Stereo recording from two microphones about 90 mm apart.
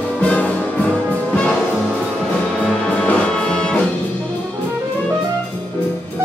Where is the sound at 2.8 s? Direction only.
15° left (ahead or behind).